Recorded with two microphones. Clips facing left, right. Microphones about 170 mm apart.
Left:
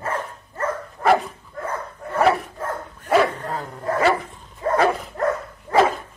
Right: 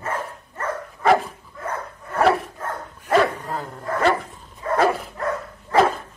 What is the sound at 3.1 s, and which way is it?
Bow-wow, 5° left (ahead or behind).